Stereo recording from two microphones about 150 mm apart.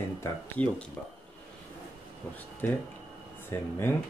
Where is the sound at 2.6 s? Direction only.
10° left (ahead or behind).